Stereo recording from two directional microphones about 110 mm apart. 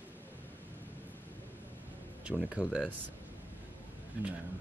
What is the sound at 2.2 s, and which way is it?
Speech, 5° right (ahead or behind).